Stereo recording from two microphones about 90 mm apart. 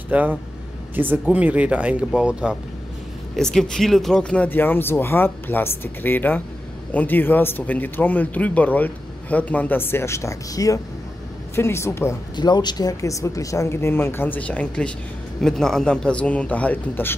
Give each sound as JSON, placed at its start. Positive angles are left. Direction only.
{"t": 0.1, "sound": "speech", "side_deg": -15}
{"t": 3.3, "sound": "a man's voice", "side_deg": 5}
{"t": 4.5, "sound": "speech", "side_deg": 20}
{"t": 11.5, "sound": "speech", "side_deg": 30}
{"t": 12.4, "sound": "a man's voice", "side_deg": 55}